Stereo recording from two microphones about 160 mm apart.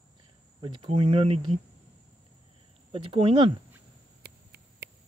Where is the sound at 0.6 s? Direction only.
30° right (ahead or behind).